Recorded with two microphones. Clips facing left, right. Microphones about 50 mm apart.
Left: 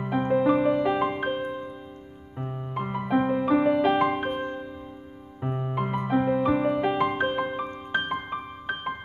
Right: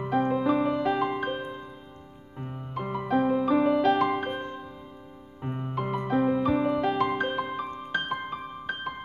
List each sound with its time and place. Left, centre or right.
0.0 s music: centre
2.7 s music: centre
5.4 s music: centre